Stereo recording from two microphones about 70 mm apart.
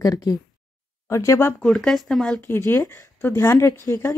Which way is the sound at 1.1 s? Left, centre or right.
Left.